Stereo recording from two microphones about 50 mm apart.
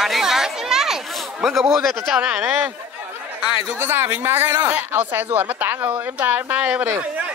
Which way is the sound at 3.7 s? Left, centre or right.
Right.